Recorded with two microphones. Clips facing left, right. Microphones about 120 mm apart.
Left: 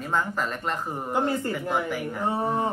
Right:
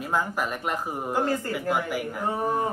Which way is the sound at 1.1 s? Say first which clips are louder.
Left 1 dB; 20° left (ahead or behind).